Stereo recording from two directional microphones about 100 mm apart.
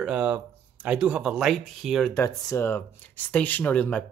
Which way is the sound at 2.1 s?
25° left (ahead or behind).